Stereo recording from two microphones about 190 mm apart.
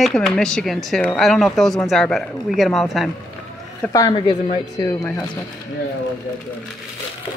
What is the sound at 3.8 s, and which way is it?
A woman's voice, 20° left (ahead or behind).